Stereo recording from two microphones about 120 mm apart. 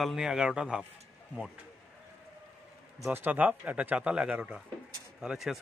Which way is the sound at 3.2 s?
15° right (ahead or behind).